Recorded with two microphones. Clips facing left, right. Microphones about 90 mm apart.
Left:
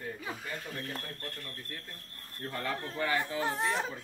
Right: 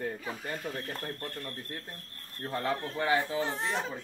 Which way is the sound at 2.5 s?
20° right (ahead or behind).